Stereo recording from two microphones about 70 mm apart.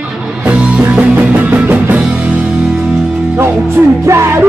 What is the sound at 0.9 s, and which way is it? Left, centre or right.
Music, right.